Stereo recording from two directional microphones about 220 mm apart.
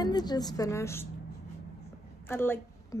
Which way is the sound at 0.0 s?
20° left (ahead or behind).